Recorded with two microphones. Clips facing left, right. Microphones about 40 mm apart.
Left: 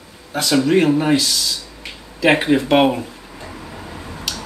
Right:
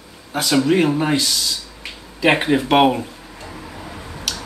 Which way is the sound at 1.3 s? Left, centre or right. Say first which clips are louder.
Left 1 dB; centre.